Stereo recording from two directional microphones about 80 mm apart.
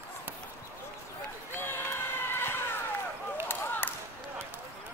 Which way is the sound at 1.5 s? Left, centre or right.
Left.